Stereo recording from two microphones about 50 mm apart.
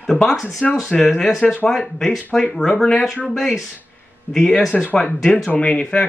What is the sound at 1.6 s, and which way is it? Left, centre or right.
Speech, centre.